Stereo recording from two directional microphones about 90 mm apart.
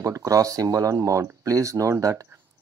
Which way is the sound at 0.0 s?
40° right (ahead or behind).